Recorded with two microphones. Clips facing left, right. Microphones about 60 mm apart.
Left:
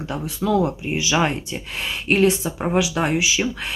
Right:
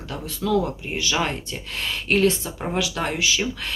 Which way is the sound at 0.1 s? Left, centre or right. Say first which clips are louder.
Left 2 dB; centre.